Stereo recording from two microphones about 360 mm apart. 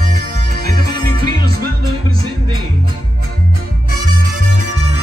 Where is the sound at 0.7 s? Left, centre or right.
Right.